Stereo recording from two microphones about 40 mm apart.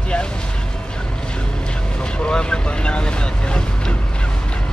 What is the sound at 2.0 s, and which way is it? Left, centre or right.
Speech, left.